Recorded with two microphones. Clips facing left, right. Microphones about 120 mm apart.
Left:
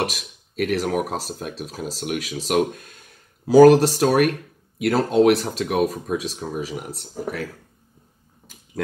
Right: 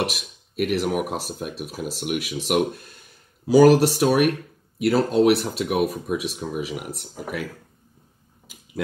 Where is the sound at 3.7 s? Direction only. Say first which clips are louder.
Left 1 dB; 40° left (ahead or behind).